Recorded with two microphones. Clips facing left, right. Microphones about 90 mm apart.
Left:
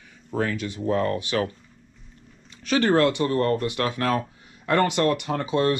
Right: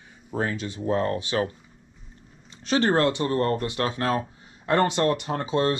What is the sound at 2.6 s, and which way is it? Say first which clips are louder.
Speech: left 2 dB; 25° right (ahead or behind).